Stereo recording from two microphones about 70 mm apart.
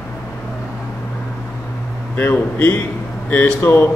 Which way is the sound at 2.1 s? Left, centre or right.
Left.